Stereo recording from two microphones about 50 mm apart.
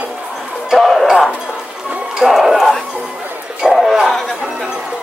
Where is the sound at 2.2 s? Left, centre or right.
Centre.